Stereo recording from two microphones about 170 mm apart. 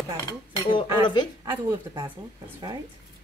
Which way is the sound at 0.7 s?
25° left (ahead or behind).